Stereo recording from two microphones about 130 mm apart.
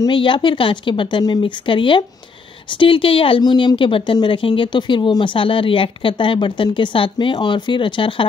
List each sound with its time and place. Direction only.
0.0 s a woman's voice: 40° left (ahead or behind)